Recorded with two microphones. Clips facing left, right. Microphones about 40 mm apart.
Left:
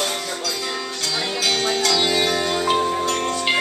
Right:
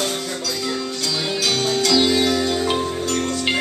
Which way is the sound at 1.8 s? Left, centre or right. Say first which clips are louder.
Right 5 dB; centre.